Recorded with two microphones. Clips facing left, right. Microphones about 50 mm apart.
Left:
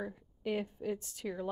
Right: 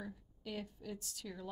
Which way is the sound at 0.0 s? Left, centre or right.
Left.